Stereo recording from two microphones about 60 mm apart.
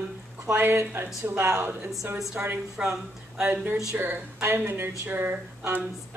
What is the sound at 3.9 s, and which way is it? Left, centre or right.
Speech, right.